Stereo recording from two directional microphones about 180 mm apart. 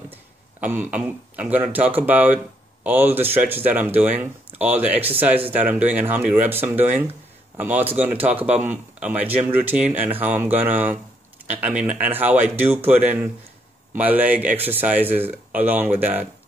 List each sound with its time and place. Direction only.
0.6 s speech: 10° right (ahead or behind)